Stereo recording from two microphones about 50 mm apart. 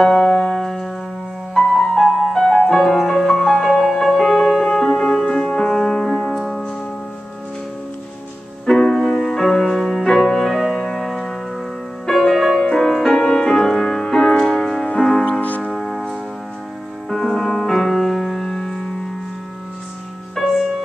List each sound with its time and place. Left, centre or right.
0.0 s music: centre
0.6 s music: centre
5.3 s music: centre
8.6 s music: centre
15.7 s music: centre
20.3 s music: centre